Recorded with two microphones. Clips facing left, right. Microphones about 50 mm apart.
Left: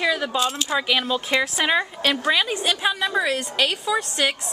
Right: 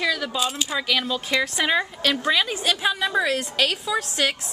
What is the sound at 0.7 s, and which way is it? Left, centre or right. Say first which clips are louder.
A woman's voice: left 2 dB; centre.